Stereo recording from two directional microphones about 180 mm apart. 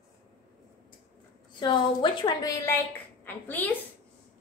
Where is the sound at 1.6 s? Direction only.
25° left (ahead or behind); by 3.7 s 10° left (ahead or behind).